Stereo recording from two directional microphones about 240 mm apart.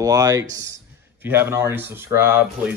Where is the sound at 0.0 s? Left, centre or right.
Centre.